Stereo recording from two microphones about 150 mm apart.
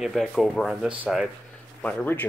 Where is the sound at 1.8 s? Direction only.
10° left (ahead or behind).